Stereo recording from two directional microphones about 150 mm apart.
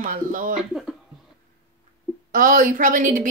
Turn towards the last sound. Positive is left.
turn(degrees=-60)  # may be behind; listen again after turning